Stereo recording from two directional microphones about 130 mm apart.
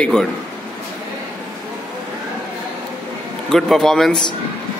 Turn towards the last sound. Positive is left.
turn(degrees=5)  # may be behind; listen again after turning